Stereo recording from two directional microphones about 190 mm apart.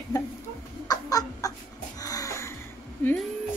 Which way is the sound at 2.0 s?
20° left (ahead or behind).